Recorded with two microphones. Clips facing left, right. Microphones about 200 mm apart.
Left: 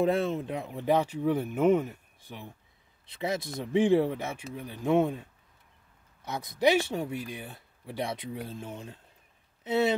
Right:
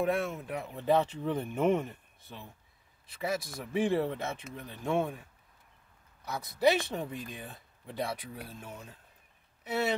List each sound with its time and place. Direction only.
0.0 s speech: 30° left (ahead or behind)
0.7 s speech: 15° left (ahead or behind)
3.2 s speech: 25° left (ahead or behind)